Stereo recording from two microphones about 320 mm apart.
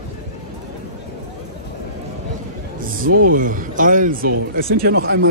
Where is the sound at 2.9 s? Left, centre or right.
Right.